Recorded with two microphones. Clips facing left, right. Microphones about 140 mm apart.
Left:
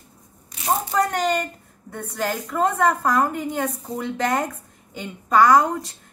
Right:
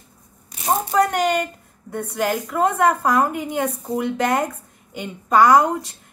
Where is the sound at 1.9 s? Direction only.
10° right (ahead or behind).